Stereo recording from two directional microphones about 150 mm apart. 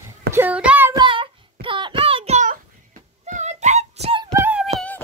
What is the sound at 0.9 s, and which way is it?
Child singing, 35° right (ahead or behind).